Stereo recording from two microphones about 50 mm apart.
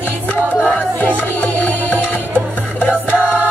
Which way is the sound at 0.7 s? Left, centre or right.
Left.